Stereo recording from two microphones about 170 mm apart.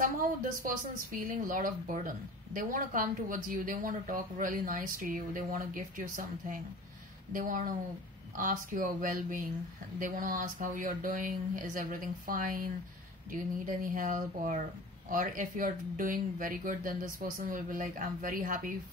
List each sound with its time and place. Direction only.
0.0 s speech: 55° right (ahead or behind)